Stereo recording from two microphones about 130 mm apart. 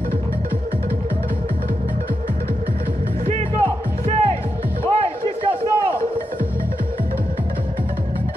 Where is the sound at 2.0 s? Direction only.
90° right.